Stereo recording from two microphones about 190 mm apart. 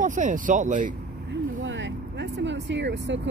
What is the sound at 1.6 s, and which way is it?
Vehicle, 80° right.